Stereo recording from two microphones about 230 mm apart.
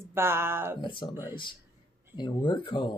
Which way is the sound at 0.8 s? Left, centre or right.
Left.